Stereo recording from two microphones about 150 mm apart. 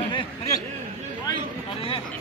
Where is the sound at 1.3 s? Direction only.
35° left (ahead or behind).